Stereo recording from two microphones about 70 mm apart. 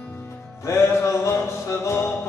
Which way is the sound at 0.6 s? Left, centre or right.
Left.